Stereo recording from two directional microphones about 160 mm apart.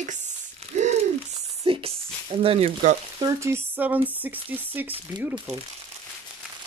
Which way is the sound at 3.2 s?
20° right (ahead or behind).